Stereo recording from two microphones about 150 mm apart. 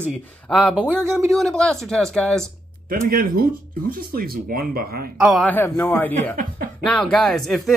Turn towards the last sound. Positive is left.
turn(degrees=0)  # may be behind; listen again after turning